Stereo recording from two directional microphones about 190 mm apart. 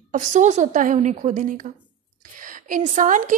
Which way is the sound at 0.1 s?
40° right (ahead or behind).